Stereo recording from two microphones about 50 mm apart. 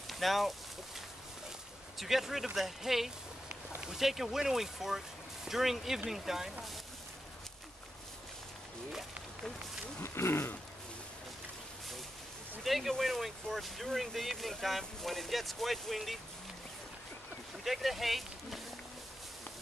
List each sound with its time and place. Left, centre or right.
0.1 s a sound: centre
2.0 s speech: centre
10.0 s speech: left
12.6 s speech: centre
17.6 s speech: centre